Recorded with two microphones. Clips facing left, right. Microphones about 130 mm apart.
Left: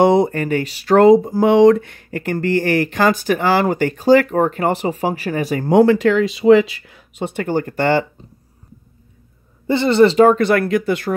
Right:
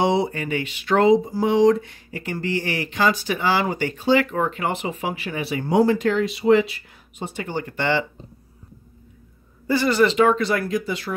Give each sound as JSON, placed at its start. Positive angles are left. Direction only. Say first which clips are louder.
{"t": 0.0, "sound": "speech", "louder": "left 7 dB", "side_deg": 50}
{"t": 5.8, "sound": "speech", "louder": "left 6 dB", "side_deg": 80}
{"t": 7.3, "sound": "speech", "louder": "left 8 dB", "side_deg": 45}
{"t": 9.7, "sound": "speech", "louder": "left 6 dB", "side_deg": 25}
{"t": 10.1, "sound": "speech", "louder": "left 6 dB", "side_deg": 45}